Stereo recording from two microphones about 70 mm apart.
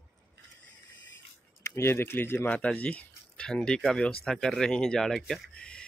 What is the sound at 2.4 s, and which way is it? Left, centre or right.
Speech, left.